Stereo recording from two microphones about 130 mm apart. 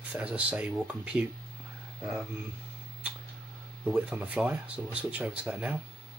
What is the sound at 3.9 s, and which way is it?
Speech, 5° right (ahead or behind).